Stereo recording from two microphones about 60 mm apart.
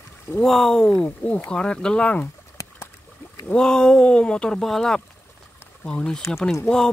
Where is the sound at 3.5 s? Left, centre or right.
Centre.